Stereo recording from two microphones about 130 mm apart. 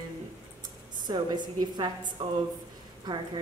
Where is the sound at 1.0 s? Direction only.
35° right (ahead or behind).